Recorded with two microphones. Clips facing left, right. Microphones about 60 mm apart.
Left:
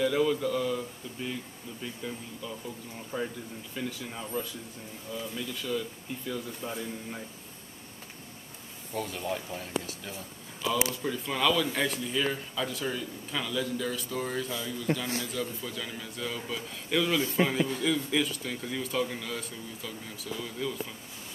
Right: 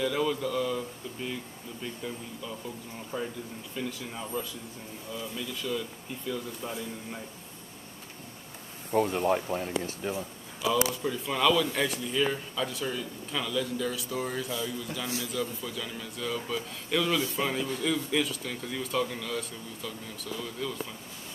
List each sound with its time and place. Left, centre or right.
0.0 s speech: centre
8.9 s speech: right
11.0 s speech: centre